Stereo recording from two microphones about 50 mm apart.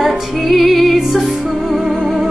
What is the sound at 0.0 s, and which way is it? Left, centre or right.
Music, centre.